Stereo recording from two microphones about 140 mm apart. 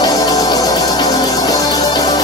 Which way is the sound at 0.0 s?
25° left (ahead or behind).